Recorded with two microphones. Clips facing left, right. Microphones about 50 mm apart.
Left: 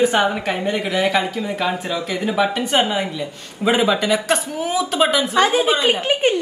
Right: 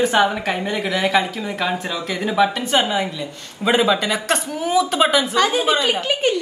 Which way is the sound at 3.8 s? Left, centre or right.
Centre.